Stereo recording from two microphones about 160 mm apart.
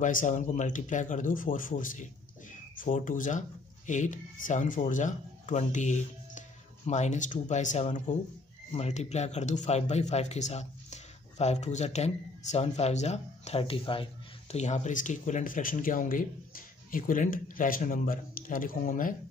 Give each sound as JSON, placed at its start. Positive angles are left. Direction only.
{"t": 0.0, "sound": "speech", "side_deg": 55}